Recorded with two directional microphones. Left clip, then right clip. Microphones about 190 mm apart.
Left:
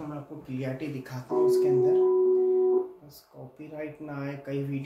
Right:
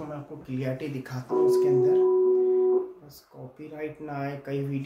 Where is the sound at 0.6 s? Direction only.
25° right (ahead or behind).